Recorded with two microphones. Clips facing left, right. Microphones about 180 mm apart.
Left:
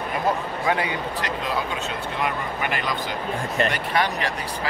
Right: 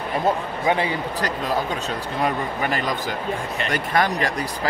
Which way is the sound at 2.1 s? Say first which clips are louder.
Right 4 dB; 35° right (ahead or behind).